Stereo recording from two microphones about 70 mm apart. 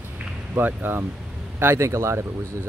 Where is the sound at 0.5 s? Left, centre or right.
Right.